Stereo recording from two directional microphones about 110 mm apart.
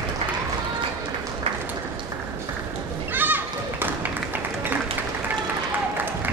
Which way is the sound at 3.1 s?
20° right (ahead or behind).